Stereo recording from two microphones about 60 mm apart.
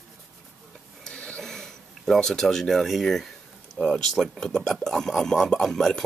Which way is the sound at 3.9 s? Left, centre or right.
Centre.